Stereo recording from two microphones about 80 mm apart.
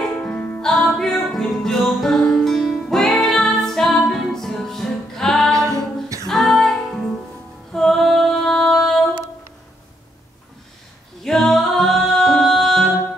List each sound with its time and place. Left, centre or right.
0.0 s music: centre
5.5 s a capella: right
6.2 s music: centre
11.2 s music: centre